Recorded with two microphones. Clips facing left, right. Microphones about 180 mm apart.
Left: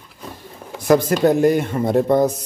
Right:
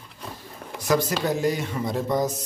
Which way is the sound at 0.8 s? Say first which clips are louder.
Left 8 dB; 55° left (ahead or behind).